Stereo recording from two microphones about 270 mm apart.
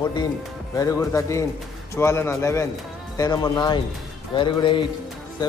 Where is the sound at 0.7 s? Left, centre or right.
Centre.